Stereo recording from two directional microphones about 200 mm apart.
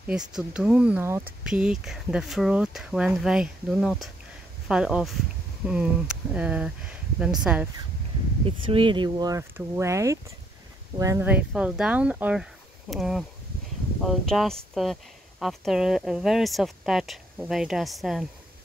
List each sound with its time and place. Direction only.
0.0 s speech: 5° right (ahead or behind)
8.5 s speech: 25° right (ahead or behind); by 18.2 s centre (ahead or behind)